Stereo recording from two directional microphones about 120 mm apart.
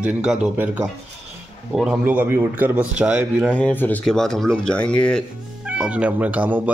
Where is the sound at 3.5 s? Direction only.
15° left (ahead or behind).